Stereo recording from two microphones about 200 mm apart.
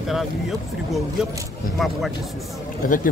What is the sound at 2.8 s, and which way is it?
Speech, 45° left (ahead or behind).